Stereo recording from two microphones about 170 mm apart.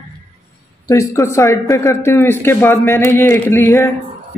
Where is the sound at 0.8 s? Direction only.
20° left (ahead or behind).